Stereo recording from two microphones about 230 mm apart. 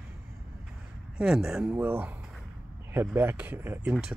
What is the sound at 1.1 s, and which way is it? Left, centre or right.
Speech, centre.